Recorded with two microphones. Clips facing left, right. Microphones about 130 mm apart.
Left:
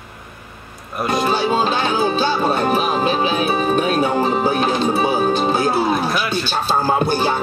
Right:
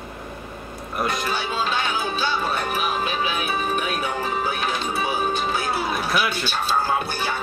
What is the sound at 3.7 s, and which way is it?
Speech, 30° left (ahead or behind).